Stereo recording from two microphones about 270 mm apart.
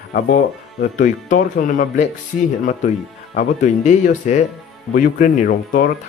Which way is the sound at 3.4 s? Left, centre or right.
Left.